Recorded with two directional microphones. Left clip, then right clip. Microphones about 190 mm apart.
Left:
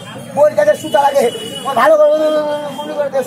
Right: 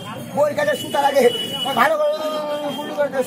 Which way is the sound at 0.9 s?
Centre (ahead or behind).